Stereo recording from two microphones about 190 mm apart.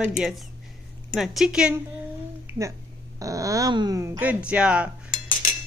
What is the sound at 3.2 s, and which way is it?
A child's voice, 15° right (ahead or behind).